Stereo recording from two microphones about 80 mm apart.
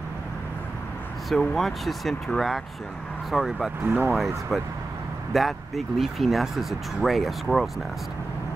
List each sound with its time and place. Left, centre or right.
1.3 s speech: centre
3.8 s speech: right
5.3 s speech: centre